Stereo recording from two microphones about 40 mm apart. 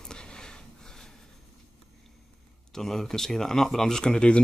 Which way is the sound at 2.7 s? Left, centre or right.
Centre.